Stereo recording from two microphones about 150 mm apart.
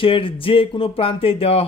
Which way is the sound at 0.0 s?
35° left (ahead or behind).